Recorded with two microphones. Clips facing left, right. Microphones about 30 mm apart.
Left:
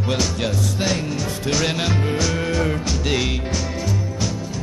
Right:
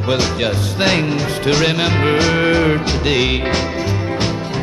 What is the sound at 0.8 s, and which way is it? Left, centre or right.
Music, right.